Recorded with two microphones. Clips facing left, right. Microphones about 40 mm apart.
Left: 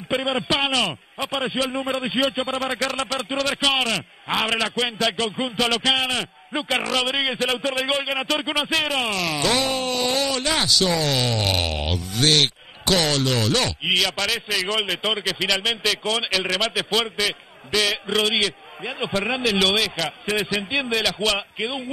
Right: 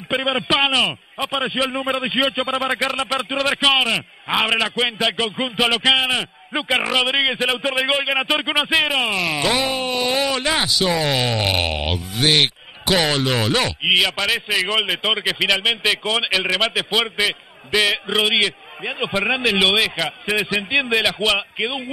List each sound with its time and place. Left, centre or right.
0.1 s a man's voice: centre